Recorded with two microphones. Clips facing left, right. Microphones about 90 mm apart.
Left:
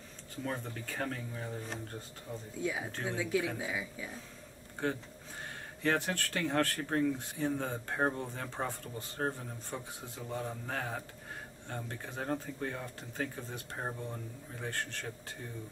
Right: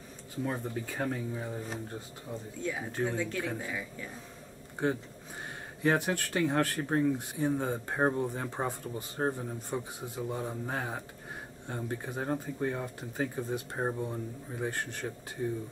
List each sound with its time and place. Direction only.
0.4 s speech: 15° right (ahead or behind)
2.6 s speech: 5° left (ahead or behind)
4.8 s speech: 20° right (ahead or behind)